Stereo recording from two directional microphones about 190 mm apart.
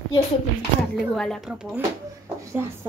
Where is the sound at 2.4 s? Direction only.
15° right (ahead or behind).